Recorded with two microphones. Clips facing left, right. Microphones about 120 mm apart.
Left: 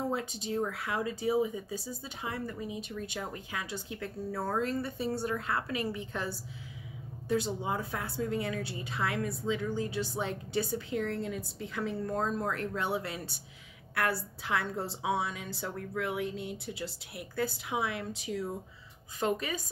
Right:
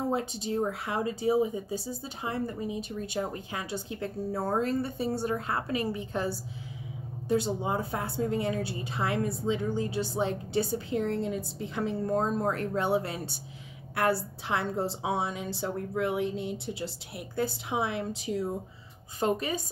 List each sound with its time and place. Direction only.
0.1 s a woman's voice: 30° right (ahead or behind)
7.2 s a woman's voice: 25° right (ahead or behind)
19.1 s a woman's voice: 25° right (ahead or behind)